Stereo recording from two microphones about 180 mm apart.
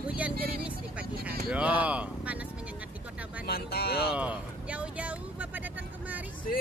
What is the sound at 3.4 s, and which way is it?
Speech, 60° left (ahead or behind).